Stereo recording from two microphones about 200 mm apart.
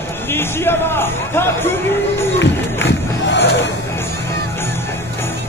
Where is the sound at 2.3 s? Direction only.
65° left (ahead or behind).